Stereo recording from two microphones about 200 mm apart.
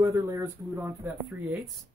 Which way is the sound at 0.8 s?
Centre (ahead or behind).